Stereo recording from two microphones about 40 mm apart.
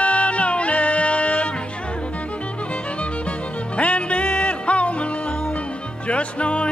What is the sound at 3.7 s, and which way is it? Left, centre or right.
Music, left.